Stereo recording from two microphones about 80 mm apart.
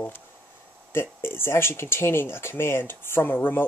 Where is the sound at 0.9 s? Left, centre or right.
Left.